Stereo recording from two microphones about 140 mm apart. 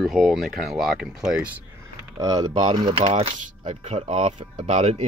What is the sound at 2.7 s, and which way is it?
Speech, 45° right (ahead or behind).